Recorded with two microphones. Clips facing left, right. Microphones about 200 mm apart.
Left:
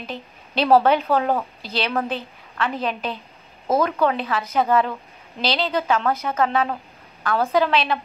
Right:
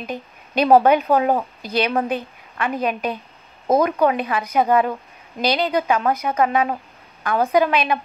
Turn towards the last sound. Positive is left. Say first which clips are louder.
# right 2 dB
turn(degrees=-15)  # may be behind; listen again after turning